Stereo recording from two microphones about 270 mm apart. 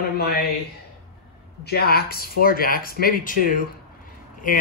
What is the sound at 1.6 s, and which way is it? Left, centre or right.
Speech, left.